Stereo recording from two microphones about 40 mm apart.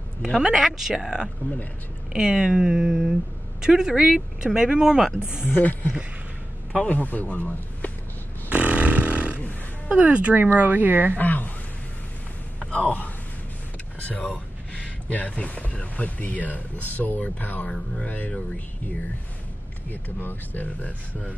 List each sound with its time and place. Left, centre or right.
0.2 s speech: centre
2.1 s speech: right
5.6 s speech: left
8.5 s a sound: right
9.9 s speech: right
11.1 s speech: left
12.5 s a sound: left
14.0 s a sound: left
15.1 s speech: left
19.9 s speech: left